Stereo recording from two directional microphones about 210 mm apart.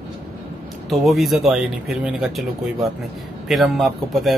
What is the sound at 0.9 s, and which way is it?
Speech, centre (ahead or behind).